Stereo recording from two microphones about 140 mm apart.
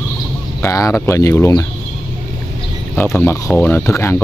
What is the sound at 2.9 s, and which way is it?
Speech, 10° left (ahead or behind).